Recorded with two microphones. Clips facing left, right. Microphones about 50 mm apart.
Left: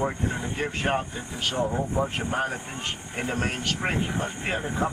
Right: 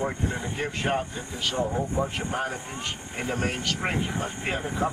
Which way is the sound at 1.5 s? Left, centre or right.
Centre.